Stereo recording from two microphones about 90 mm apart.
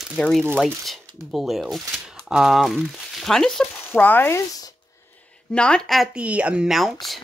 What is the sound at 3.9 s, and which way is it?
Speech, 20° left (ahead or behind).